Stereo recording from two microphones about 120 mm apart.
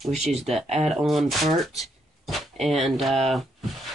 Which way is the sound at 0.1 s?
60° right (ahead or behind).